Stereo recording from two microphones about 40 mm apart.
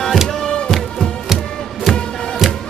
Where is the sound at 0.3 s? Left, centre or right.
Centre.